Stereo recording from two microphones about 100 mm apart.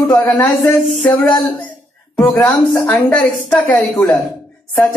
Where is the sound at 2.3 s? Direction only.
10° left (ahead or behind).